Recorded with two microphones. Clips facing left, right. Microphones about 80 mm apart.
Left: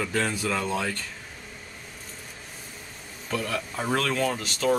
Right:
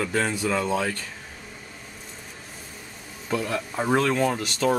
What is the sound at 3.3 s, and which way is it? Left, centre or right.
Speech, centre.